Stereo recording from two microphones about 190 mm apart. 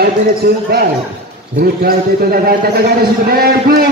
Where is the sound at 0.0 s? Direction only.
55° right (ahead or behind).